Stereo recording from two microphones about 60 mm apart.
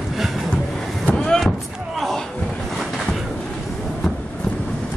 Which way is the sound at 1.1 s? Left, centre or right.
Centre.